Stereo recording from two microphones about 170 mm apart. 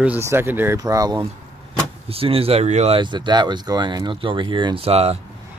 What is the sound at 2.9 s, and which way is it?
Speech, 25° right (ahead or behind).